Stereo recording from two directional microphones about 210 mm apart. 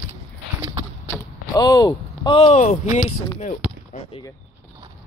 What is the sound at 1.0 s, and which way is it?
Speech, 15° left (ahead or behind).